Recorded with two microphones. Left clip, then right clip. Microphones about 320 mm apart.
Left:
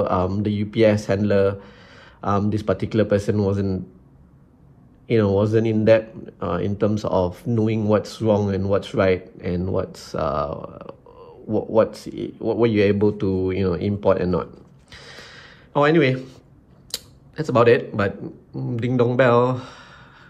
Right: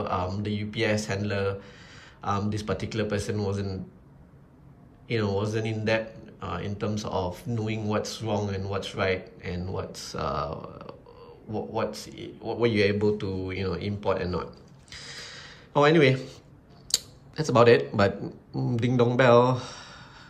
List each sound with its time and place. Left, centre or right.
0.0 s speech: centre
5.0 s speech: centre